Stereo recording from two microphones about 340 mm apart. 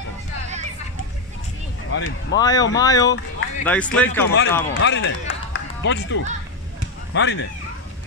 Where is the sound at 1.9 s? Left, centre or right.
Left.